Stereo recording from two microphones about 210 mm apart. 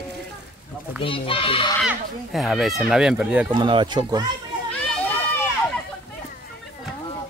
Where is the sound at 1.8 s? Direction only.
Centre (ahead or behind).